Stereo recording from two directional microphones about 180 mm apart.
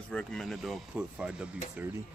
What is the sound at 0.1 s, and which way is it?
Speech, 5° left (ahead or behind).